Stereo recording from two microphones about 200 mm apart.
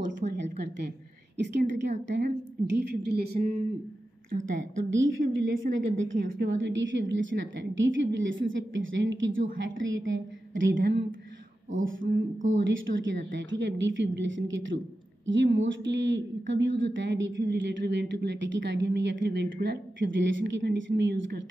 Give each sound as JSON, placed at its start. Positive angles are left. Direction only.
{"t": 0.0, "sound": "a woman's voice", "side_deg": -60}
{"t": 5.0, "sound": "a woman's voice", "side_deg": -70}
{"t": 6.2, "sound": "a woman's voice", "side_deg": -50}
{"t": 6.5, "sound": "a woman's voice", "side_deg": -70}
{"t": 12.4, "sound": "a woman's voice", "side_deg": -75}